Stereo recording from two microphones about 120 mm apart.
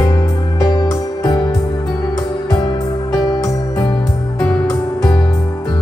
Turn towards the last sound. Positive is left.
turn(degrees=15)  # may be behind; listen again after turning